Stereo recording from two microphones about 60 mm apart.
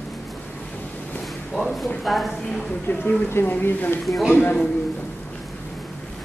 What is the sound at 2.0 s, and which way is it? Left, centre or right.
Speech, centre.